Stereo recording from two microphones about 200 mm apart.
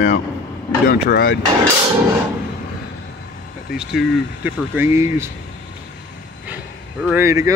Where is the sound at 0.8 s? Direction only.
50° left (ahead or behind).